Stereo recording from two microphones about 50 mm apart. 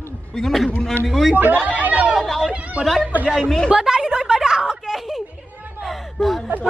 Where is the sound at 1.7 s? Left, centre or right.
Right.